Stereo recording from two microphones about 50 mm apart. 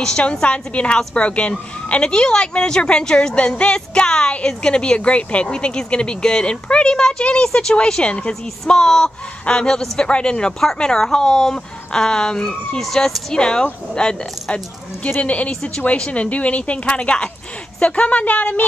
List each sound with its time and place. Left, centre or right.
0.0 s speech: centre; by 18.7 s left